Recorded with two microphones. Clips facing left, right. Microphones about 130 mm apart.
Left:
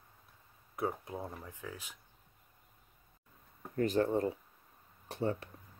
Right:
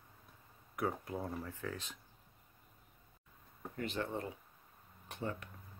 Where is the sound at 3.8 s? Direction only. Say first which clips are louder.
Left 9 dB; 40° left (ahead or behind).